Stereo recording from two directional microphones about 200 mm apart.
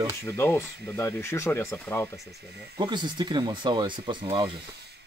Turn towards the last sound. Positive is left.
turn(degrees=-20)  # may be behind; listen again after turning